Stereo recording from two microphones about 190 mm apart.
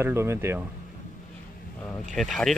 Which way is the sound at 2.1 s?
Centre (ahead or behind).